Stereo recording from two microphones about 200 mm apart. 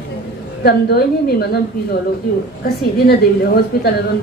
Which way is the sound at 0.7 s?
50° left (ahead or behind).